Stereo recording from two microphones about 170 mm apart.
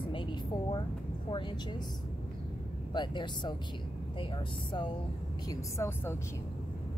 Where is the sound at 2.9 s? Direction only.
25° left (ahead or behind).